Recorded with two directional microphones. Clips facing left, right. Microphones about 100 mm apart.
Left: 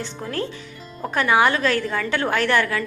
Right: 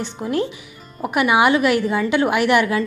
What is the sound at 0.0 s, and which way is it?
A woman's voice, 15° right (ahead or behind).